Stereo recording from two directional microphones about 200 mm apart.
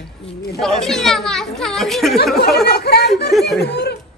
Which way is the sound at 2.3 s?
55° left (ahead or behind).